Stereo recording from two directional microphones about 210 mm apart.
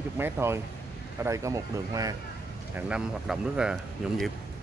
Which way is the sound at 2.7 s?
5° right (ahead or behind).